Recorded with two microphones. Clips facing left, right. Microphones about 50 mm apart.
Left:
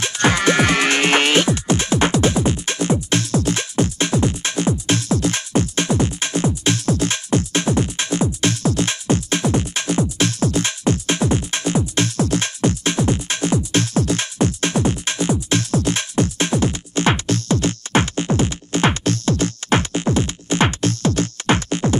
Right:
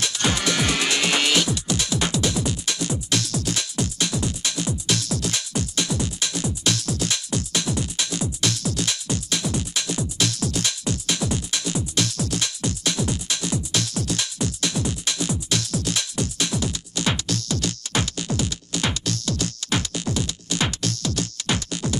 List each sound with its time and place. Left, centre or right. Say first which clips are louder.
0.0 s music: left 7 dB; left